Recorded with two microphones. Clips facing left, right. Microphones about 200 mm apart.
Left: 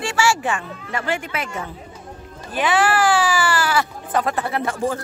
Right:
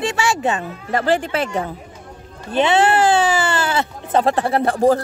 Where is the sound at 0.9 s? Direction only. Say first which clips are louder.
Right 7 dB; 35° right (ahead or behind).